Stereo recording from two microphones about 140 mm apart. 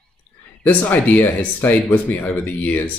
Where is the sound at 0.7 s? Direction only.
10° left (ahead or behind).